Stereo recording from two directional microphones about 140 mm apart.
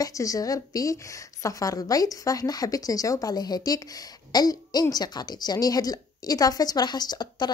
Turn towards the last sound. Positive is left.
turn(degrees=30)  # may be behind; listen again after turning